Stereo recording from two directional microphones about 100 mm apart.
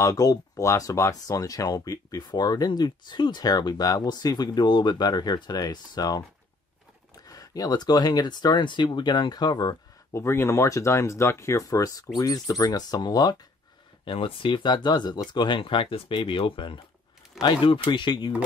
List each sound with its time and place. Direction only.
0.0 s speech: 35° left (ahead or behind)
7.2 s speech: 35° left (ahead or behind)
10.1 s speech: 25° left (ahead or behind); by 13.4 s 45° left (ahead or behind)
14.0 s speech: 60° left (ahead or behind)